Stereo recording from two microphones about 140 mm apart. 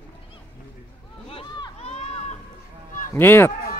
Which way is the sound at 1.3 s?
40° left (ahead or behind).